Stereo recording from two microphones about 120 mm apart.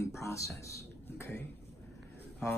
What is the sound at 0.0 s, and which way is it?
Music, 25° left (ahead or behind).